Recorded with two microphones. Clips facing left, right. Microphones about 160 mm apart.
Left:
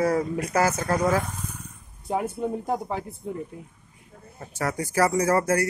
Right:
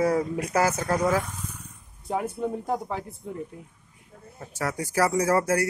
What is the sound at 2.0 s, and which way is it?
Speech, 10° left (ahead or behind).